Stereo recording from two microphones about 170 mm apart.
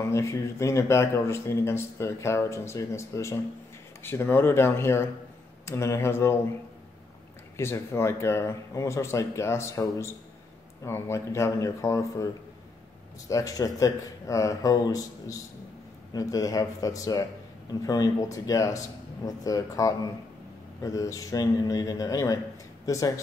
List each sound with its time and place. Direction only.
0.1 s speech: 15° left (ahead or behind)
7.5 s speech: 15° left (ahead or behind)
13.3 s a man's voice: 20° left (ahead or behind)